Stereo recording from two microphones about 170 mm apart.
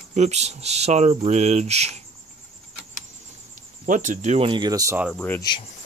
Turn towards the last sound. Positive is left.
turn(degrees=25)  # may be behind; listen again after turning